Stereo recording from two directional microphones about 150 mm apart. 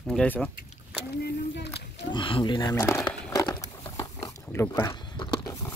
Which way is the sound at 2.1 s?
35° left (ahead or behind).